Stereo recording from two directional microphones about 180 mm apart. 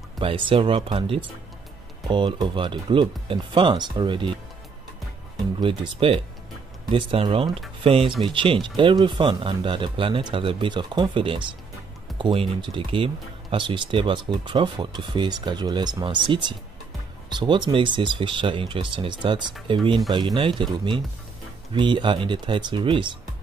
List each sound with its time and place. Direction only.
0.2 s speech: 30° right (ahead or behind)
5.6 s speech: 30° right (ahead or behind)
8.0 s speech: centre (ahead or behind)
8.3 s speech: 30° right (ahead or behind)
21.7 s speech: 25° right (ahead or behind)